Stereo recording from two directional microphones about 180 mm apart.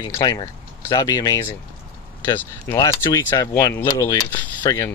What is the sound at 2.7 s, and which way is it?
Speech, 20° left (ahead or behind).